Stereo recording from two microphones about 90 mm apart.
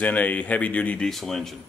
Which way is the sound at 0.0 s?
15° left (ahead or behind).